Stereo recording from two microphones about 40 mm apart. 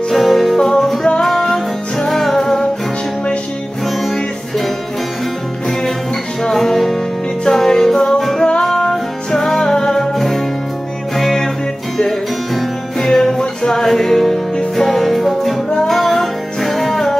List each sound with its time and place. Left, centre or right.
0.1 s music: centre
4.0 s music: centre
6.4 s music: centre
13.0 s music: centre